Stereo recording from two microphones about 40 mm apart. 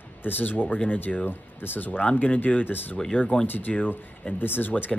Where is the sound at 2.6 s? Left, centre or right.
Left.